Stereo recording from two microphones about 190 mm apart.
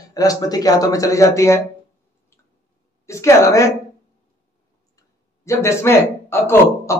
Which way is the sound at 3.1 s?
15° left (ahead or behind).